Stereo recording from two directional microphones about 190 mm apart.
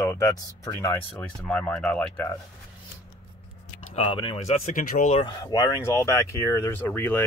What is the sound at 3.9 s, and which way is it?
Speech, 25° left (ahead or behind).